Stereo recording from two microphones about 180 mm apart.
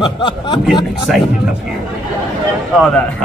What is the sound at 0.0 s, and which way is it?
Speech, 25° left (ahead or behind).